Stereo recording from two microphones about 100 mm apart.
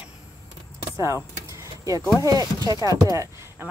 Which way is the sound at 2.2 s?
35° right (ahead or behind).